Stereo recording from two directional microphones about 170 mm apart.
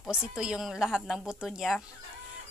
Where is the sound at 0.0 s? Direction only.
5° right (ahead or behind).